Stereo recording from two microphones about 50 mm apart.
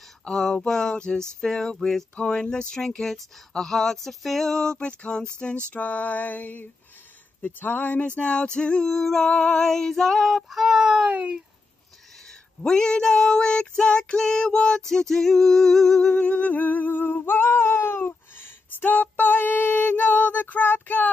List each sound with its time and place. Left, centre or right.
0.2 s female singing: centre
1.8 s a sound: centre
2.1 s female singing: centre
5.7 s music: left
8.2 s music: left
8.8 s female singing: centre
11.1 s a sound: right
12.3 s female singing: centre
16.3 s music: left
16.6 s humming: left
18.8 s music: left